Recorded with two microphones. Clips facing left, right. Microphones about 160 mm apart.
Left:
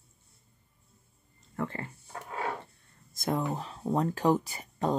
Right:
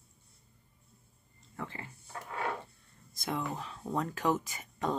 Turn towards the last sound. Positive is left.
turn(degrees=35)  # may be behind; listen again after turning